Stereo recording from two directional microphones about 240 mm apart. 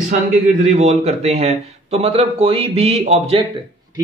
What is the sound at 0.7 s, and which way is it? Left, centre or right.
A man's voice, right.